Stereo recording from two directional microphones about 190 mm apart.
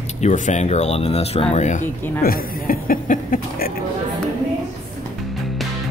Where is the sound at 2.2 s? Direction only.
50° left (ahead or behind).